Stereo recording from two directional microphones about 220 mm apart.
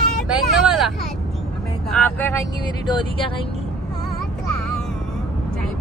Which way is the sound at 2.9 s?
20° left (ahead or behind).